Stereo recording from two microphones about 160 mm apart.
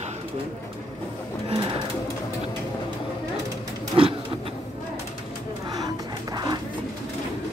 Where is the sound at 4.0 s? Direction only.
35° right (ahead or behind).